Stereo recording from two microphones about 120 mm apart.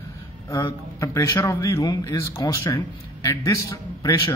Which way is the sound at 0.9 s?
25° left (ahead or behind).